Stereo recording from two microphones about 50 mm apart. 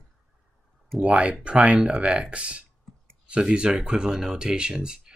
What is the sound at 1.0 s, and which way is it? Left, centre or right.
Speech, right.